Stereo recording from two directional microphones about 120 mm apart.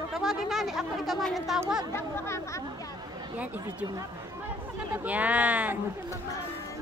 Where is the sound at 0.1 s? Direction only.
Centre (ahead or behind).